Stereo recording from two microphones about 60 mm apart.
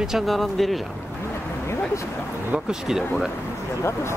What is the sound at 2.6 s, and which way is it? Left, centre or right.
Speech, centre.